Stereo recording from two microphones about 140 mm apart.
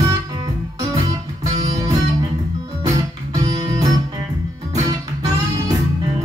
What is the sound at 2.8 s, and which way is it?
Music, 25° right (ahead or behind).